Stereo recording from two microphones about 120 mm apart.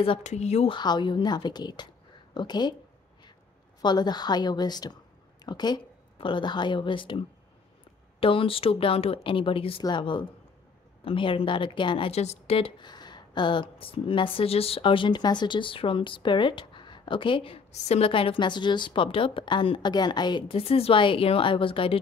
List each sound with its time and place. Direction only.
0.2 s speech: 70° left (ahead or behind)
0.7 s a woman's voice: 40° left (ahead or behind)
3.8 s a woman's voice: 35° left (ahead or behind)
8.2 s a woman's voice: 50° left (ahead or behind)
12.1 s speech: 65° left (ahead or behind); by 17.6 s 45° left (ahead or behind)
17.7 s speech: 65° left (ahead or behind)